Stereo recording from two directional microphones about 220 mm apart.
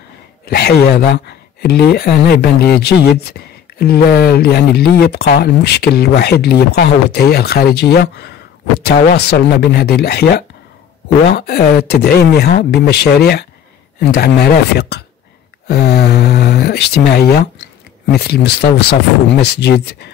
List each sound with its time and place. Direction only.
0.5 s speech: 45° left (ahead or behind)